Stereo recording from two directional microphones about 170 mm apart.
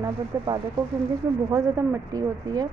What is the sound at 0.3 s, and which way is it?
A woman's voice, 20° right (ahead or behind).